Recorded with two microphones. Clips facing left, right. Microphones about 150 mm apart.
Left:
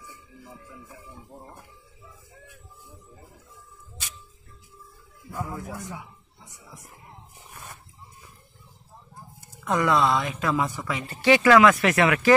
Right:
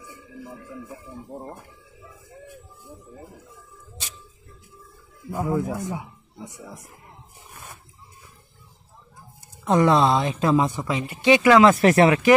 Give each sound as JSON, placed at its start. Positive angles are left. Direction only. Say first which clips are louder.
{"t": 5.3, "sound": "speech", "louder": "right 9 dB", "side_deg": -25}
{"t": 9.7, "sound": "speech", "louder": "right 4 dB", "side_deg": -30}
{"t": 11.6, "sound": "speech", "louder": "right 4 dB", "side_deg": -35}